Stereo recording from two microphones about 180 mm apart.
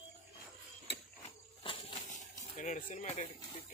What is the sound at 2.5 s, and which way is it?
Speech, 45° left (ahead or behind).